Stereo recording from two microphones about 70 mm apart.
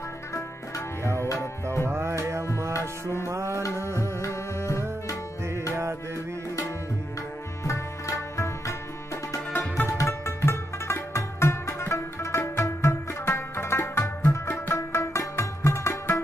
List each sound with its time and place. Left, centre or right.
0.3 s tabla: left
1.2 s music: left
1.9 s music: right
3.6 s music: left
7.6 s music: left